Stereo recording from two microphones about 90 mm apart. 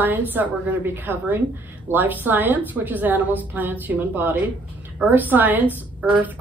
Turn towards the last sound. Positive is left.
turn(degrees=-15)  # may be behind; listen again after turning